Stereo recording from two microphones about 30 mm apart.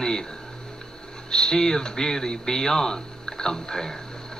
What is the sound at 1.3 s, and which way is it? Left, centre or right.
A man's voice, left.